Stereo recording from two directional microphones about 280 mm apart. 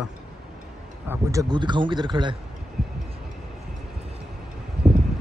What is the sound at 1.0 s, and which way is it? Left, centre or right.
A man's voice, centre.